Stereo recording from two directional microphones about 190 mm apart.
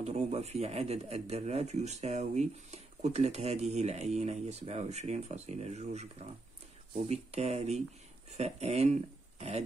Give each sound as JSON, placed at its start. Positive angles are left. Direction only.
{"t": 0.0, "sound": "speech", "side_deg": -35}